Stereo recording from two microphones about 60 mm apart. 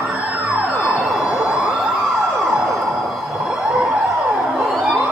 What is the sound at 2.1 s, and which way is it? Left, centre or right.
Emergency vehicle, centre.